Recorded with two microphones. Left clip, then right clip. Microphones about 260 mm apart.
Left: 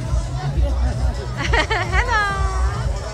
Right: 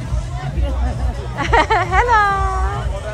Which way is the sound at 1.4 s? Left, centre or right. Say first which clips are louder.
Right 6 dB; centre.